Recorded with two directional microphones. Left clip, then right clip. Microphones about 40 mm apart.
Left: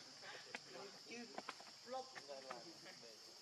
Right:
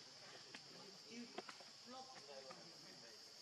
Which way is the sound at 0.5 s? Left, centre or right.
Left.